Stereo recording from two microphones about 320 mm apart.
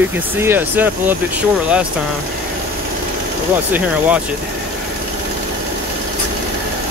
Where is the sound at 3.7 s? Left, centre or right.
Centre.